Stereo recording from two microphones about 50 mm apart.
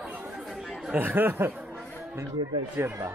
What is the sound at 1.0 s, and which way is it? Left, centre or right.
Speech, right.